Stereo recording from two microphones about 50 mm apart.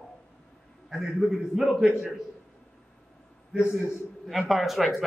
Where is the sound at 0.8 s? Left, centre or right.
Centre.